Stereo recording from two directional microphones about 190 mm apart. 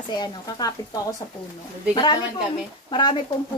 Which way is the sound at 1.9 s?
25° left (ahead or behind).